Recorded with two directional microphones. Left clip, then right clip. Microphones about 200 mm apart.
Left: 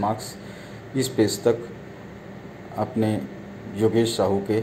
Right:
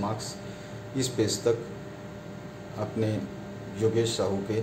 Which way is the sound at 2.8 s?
15° left (ahead or behind).